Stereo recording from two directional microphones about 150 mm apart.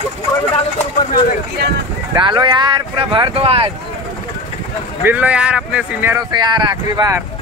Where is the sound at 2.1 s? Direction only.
30° right (ahead or behind).